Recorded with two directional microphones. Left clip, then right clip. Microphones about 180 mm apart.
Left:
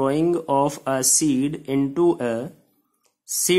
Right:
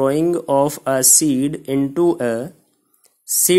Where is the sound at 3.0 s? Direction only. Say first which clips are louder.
Right 5 dB; 25° right (ahead or behind).